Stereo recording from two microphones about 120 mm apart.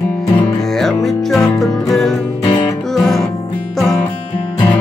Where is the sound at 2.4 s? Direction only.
40° left (ahead or behind).